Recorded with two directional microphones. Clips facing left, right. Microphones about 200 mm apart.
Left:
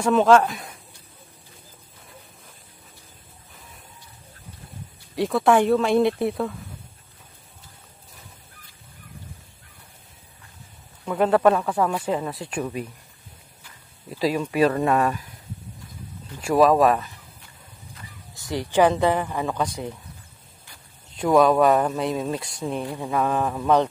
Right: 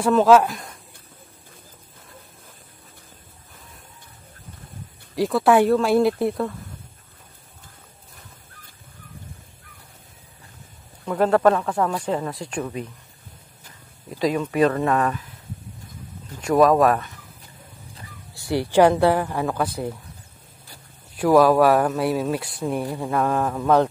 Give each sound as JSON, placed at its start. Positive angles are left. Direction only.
{"t": 0.0, "sound": "speech", "side_deg": -5}
{"t": 5.1, "sound": "speech", "side_deg": 0}
{"t": 11.1, "sound": "speech", "side_deg": 5}
{"t": 14.1, "sound": "speech", "side_deg": 5}
{"t": 16.3, "sound": "speech", "side_deg": 5}
{"t": 18.3, "sound": "speech", "side_deg": -10}
{"t": 21.1, "sound": "speech", "side_deg": -5}
{"t": 22.9, "sound": "speech", "side_deg": 0}